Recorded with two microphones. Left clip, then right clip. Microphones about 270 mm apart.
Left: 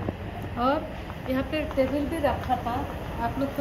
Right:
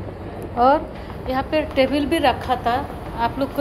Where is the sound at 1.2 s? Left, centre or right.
Centre.